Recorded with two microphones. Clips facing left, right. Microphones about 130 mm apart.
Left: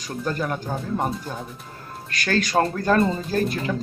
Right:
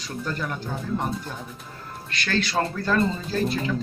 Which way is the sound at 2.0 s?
45° left (ahead or behind).